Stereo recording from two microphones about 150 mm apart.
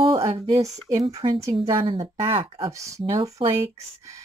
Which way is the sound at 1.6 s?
35° right (ahead or behind).